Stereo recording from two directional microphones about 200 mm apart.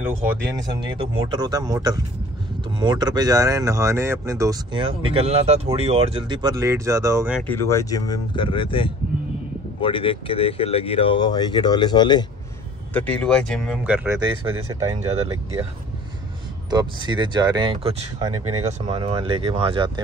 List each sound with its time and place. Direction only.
0.7 s speech: 20° right (ahead or behind)
7.4 s speech: 10° left (ahead or behind)
12.9 s speech: 5° left (ahead or behind)
13.8 s speech: 10° right (ahead or behind)
16.7 s speech: 20° right (ahead or behind)